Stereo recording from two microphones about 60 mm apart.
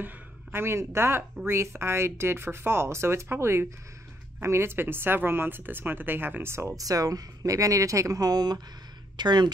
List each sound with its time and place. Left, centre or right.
0.0 s speech: right
6.8 s speech: right